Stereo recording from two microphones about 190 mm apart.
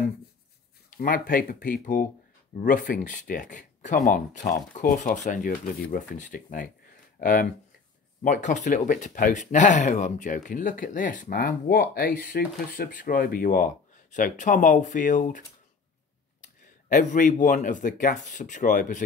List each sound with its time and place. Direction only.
0.8 s speech: 50° left (ahead or behind)
16.9 s speech: 45° left (ahead or behind)